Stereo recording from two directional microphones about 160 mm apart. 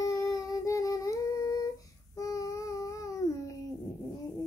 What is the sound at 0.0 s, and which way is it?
Humming, 20° left (ahead or behind).